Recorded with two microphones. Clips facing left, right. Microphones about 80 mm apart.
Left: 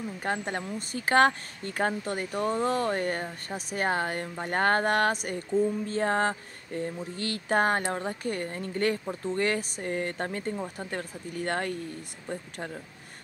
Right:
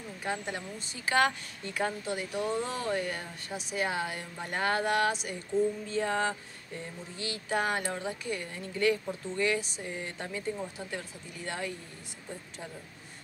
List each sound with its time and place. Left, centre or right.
0.2 s speech: left